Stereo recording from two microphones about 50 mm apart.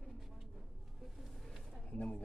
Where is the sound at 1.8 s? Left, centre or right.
Left.